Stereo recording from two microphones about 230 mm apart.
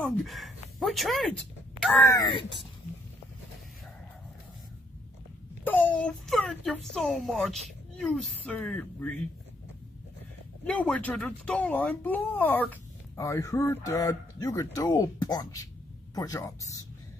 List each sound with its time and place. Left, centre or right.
0.0 s speech: centre
2.1 s speech: left
5.6 s speech: centre
10.6 s speech: centre